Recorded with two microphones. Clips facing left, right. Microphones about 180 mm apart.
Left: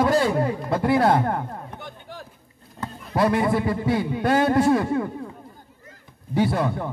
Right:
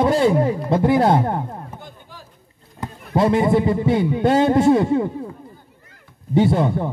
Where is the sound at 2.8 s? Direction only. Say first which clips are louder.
Right 3 dB; 25° right (ahead or behind).